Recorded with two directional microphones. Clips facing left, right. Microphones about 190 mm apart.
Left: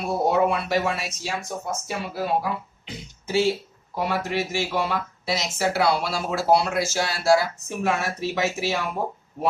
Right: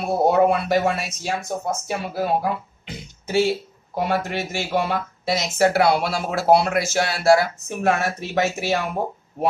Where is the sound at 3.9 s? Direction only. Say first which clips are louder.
Right 2 dB; 50° right (ahead or behind).